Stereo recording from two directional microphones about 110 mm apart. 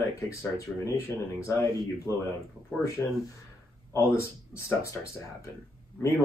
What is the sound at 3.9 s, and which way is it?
A man's voice, 25° left (ahead or behind).